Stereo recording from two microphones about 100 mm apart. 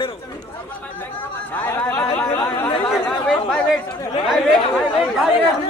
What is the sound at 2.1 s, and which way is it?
Speech, 15° left (ahead or behind).